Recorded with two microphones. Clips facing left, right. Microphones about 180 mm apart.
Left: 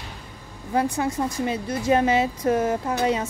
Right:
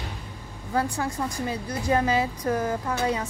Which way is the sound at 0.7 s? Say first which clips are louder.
Left 4 dB; 20° left (ahead or behind).